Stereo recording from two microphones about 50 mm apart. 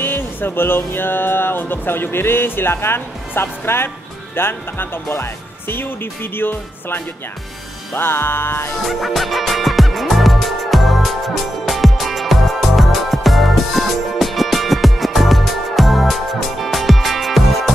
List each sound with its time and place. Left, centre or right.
0.0 s music: left
8.8 s music: centre